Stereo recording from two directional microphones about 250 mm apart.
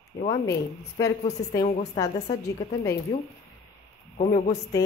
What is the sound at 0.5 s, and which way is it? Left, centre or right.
Speech, centre.